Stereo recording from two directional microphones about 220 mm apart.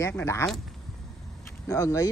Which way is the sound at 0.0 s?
10° left (ahead or behind).